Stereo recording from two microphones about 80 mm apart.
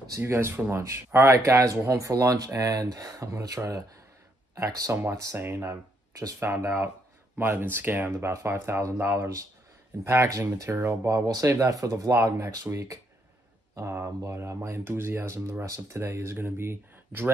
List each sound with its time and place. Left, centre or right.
0.2 s speech: right
4.9 s speech: right
8.1 s speech: right
11.2 s speech: right
12.7 s speech: right